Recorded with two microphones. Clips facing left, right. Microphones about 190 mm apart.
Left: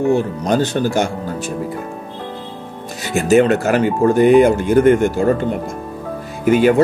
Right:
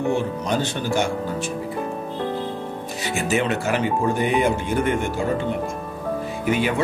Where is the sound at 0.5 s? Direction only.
40° left (ahead or behind).